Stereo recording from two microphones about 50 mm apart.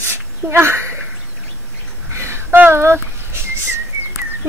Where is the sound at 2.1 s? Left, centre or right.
Right.